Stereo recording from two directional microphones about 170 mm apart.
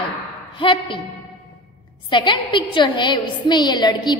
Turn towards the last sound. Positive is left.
turn(degrees=25)  # may be behind; listen again after turning